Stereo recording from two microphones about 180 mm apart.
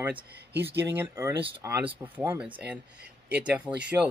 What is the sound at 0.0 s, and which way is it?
Speech, 10° right (ahead or behind).